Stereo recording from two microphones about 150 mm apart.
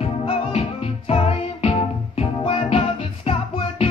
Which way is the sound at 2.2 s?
40° left (ahead or behind).